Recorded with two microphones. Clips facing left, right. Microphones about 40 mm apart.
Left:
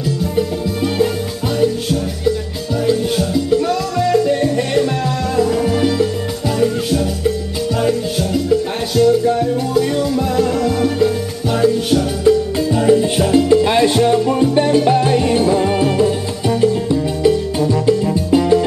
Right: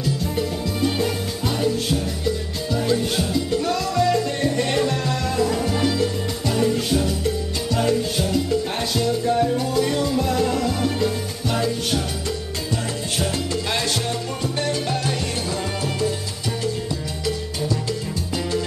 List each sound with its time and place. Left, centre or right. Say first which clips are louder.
0.0 s music: left 6 dB; centre